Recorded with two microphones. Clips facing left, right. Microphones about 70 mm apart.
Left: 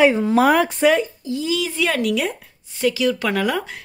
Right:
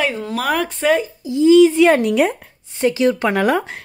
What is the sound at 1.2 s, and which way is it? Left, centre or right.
Speech, right.